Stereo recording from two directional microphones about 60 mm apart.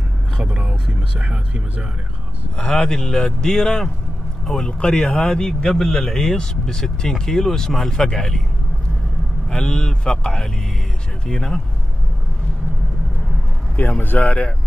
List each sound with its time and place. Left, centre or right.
0.4 s speech: centre
2.5 s a man's voice: centre
9.5 s a man's voice: centre
13.7 s speech: left